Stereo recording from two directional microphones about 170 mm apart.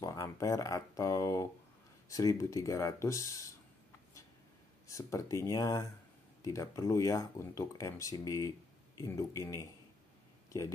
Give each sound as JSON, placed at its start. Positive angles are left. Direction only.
{"t": 0.0, "sound": "speech", "side_deg": 20}
{"t": 4.8, "sound": "speech", "side_deg": 20}